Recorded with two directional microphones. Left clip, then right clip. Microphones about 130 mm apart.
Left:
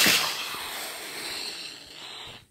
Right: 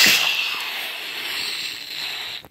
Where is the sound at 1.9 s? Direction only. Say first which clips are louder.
Right 12 dB; 25° right (ahead or behind).